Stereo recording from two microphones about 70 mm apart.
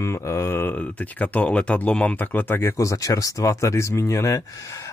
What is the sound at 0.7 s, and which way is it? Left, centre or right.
Speech, left.